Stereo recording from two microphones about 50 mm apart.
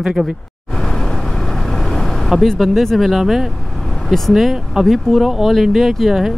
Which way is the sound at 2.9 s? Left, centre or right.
Centre.